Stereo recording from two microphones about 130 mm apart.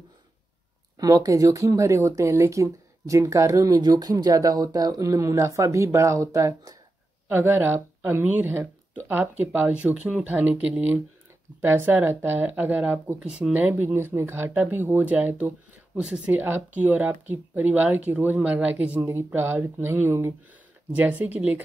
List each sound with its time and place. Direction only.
0.9 s speech: 30° right (ahead or behind)
7.2 s speech: 15° right (ahead or behind)